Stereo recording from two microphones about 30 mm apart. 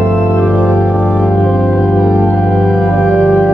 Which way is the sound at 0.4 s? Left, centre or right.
Left.